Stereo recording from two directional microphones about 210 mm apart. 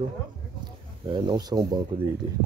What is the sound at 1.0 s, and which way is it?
Speech, 20° right (ahead or behind).